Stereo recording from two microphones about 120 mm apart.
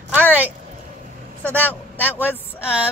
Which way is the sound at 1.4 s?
15° left (ahead or behind).